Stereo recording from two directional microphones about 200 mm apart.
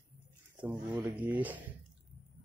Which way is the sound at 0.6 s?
5° right (ahead or behind).